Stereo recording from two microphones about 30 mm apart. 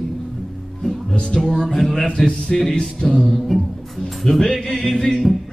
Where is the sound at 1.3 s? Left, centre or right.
Centre.